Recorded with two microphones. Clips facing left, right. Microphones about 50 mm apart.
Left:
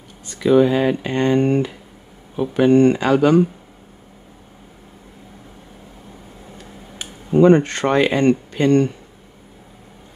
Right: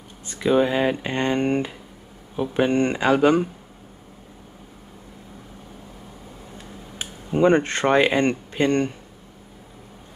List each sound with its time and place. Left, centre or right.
0.4 s speech: centre
7.0 s a sound: right
7.8 s speech: centre